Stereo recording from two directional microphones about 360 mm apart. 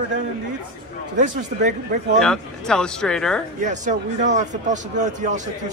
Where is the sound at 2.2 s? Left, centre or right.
Centre.